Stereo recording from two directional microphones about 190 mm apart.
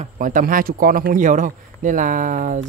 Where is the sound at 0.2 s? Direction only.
45° right (ahead or behind).